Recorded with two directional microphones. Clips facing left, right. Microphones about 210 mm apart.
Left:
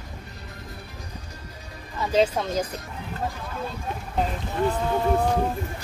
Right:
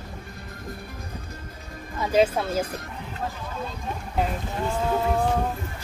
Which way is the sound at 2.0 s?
10° right (ahead or behind).